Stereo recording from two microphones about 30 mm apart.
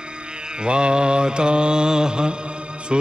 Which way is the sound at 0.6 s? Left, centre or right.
Right.